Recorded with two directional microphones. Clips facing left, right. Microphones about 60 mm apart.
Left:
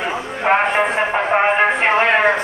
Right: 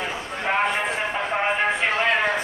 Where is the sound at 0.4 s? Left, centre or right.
Left.